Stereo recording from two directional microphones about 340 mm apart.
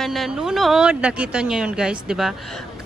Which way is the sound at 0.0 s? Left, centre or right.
Centre.